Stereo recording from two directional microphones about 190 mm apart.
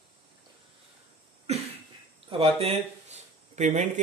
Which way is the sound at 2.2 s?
30° right (ahead or behind).